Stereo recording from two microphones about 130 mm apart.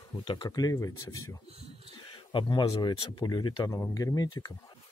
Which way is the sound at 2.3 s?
35° left (ahead or behind).